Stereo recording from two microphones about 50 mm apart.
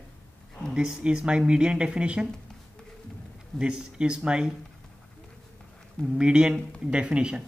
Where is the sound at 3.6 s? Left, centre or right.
Centre.